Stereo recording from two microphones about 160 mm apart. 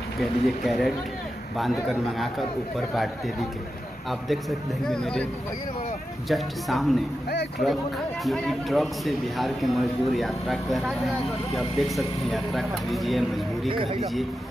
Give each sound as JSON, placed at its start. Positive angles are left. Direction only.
{"t": 0.2, "sound": "speech", "side_deg": 0}
{"t": 7.2, "sound": "speech", "side_deg": 85}
{"t": 8.2, "sound": "speech", "side_deg": 0}
{"t": 13.7, "sound": "speech", "side_deg": -35}